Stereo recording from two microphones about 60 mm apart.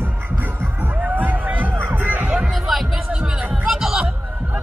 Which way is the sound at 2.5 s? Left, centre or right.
Centre.